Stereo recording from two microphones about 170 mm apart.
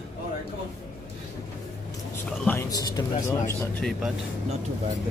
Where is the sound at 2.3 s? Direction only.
10° left (ahead or behind).